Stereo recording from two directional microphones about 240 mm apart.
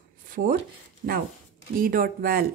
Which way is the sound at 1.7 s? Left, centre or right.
Right.